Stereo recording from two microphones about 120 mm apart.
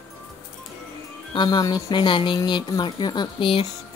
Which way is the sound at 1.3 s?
40° left (ahead or behind).